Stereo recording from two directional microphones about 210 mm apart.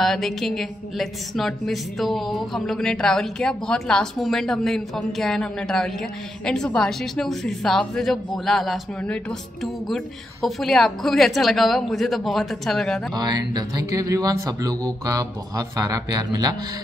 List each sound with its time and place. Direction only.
0.0 s a woman's voice: centre (ahead or behind)
13.1 s speech: 20° right (ahead or behind)